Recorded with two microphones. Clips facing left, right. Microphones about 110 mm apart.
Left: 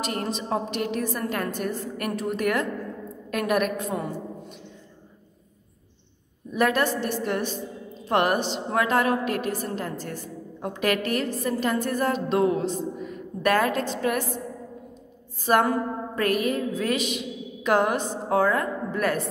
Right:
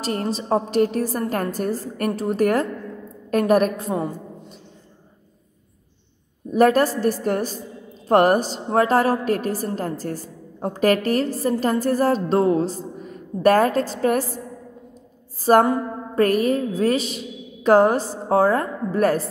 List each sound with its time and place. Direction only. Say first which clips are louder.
0.0 s a woman's voice: right 4 dB; 35° right (ahead or behind)
6.5 s a woman's voice: right 7 dB; 40° right (ahead or behind)
15.4 s a woman's voice: right 5 dB; 35° right (ahead or behind)